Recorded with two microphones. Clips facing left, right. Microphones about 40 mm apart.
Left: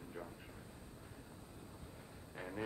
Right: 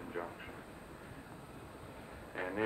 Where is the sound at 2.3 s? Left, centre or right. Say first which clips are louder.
Right 8 dB; right.